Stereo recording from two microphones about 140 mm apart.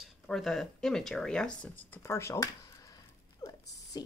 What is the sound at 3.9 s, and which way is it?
Speech, 30° left (ahead or behind).